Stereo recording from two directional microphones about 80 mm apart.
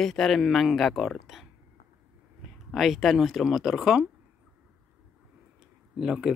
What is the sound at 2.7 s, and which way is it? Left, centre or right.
Speech, centre.